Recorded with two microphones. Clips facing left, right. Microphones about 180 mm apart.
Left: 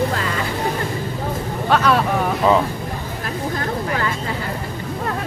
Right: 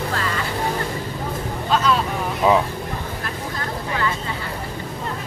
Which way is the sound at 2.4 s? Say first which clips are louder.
Even; 5° right (ahead or behind).